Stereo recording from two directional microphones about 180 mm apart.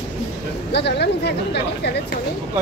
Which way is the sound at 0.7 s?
70° left (ahead or behind).